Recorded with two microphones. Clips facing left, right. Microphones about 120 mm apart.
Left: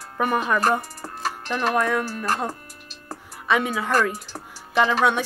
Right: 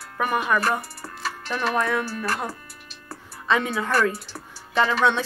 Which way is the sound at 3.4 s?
10° left (ahead or behind).